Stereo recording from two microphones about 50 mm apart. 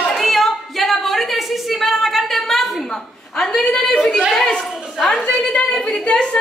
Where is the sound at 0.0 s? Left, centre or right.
Centre.